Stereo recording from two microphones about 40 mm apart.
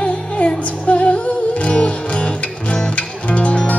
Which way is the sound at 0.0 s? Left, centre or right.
Left.